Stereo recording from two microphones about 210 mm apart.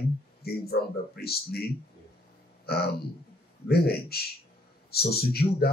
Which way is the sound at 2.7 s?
50° left (ahead or behind).